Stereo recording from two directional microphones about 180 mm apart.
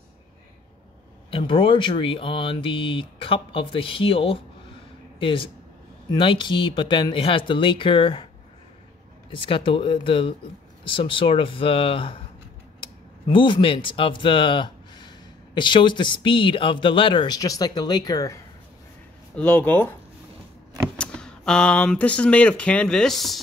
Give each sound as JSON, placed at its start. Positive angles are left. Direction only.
{"t": 1.3, "sound": "speech", "side_deg": 30}
{"t": 9.3, "sound": "speech", "side_deg": 30}
{"t": 19.3, "sound": "speech", "side_deg": 5}
{"t": 21.0, "sound": "speech", "side_deg": 5}